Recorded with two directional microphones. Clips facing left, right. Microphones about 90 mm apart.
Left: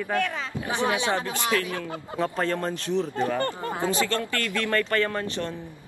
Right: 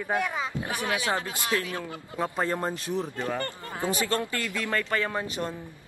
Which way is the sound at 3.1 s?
20° left (ahead or behind).